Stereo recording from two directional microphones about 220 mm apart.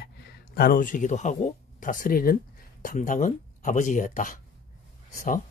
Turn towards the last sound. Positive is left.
turn(degrees=35)  # may be behind; listen again after turning